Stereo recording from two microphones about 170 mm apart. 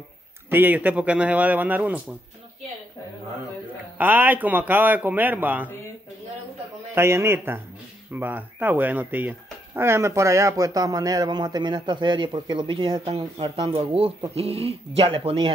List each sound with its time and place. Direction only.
0.5 s a man's voice: 10° right (ahead or behind)
4.0 s a man's voice: 10° right (ahead or behind)
7.0 s a man's voice: 15° right (ahead or behind); by 15.5 s 35° right (ahead or behind)